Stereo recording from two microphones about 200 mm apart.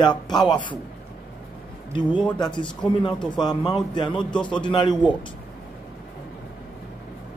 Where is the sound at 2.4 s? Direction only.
25° left (ahead or behind).